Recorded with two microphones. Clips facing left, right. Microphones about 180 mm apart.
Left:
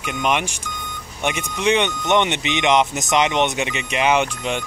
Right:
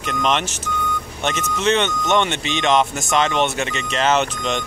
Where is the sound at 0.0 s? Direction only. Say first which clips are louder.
Right 1 dB; 10° left (ahead or behind).